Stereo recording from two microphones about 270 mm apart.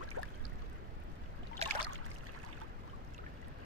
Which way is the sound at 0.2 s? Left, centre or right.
Right.